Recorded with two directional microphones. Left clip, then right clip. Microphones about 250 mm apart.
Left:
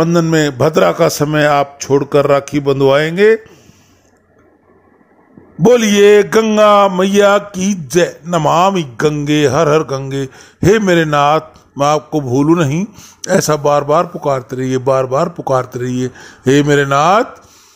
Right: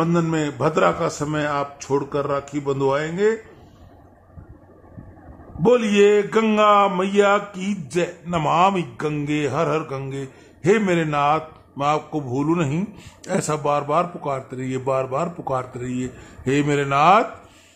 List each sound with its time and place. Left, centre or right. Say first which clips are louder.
0.0 s a man's voice: left 9 dB; left
5.6 s a man's voice: left 7 dB; left
6.9 s mantra: left 8 dB; left